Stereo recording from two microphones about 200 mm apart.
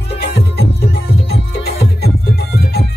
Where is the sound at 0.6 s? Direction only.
55° left (ahead or behind).